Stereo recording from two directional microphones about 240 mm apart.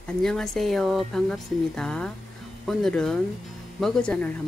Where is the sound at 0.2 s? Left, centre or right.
Centre.